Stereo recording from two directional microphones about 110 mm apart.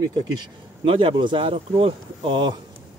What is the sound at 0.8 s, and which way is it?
Speech, 55° right (ahead or behind).